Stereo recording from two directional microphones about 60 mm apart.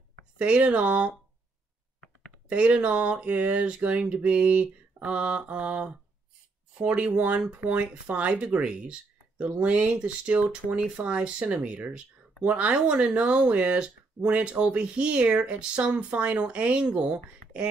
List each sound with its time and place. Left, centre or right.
0.4 s speech: right
2.5 s speech: right